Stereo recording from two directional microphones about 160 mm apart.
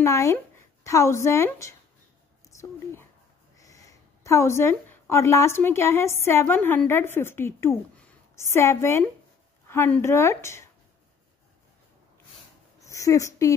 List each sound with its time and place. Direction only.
0.0 s a woman's voice: 20° left (ahead or behind)
12.8 s a woman's voice: 20° left (ahead or behind)